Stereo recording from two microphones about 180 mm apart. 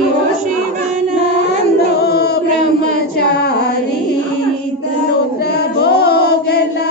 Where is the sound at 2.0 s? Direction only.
60° left (ahead or behind).